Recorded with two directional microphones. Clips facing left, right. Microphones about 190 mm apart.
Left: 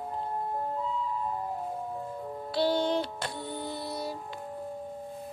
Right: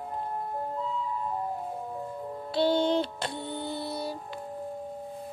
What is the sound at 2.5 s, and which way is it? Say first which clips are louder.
Music: right 2 dB; 25° right (ahead or behind).